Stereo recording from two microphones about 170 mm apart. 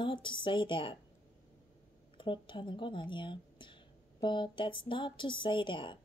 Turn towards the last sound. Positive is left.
turn(degrees=30)  # may be behind; listen again after turning